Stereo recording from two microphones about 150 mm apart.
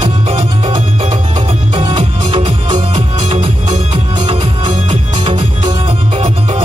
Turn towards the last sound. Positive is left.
turn(degrees=-45)  # may be behind; listen again after turning